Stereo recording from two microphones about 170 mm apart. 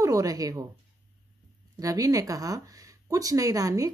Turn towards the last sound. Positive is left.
turn(degrees=-20)  # may be behind; listen again after turning